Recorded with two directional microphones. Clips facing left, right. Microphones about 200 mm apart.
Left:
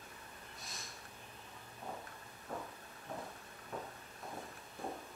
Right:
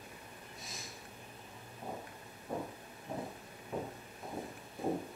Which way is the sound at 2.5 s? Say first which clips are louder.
Right 5 dB; 15° right (ahead or behind).